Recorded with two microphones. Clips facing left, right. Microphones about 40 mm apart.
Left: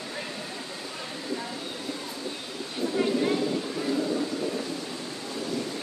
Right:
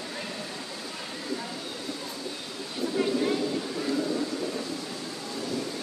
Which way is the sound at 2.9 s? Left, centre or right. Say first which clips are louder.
Left 1 dB; centre.